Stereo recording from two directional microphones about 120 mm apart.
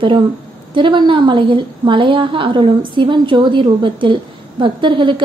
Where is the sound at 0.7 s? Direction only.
40° right (ahead or behind).